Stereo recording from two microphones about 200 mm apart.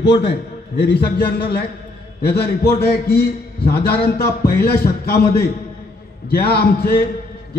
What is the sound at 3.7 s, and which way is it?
A man's voice, 50° left (ahead or behind).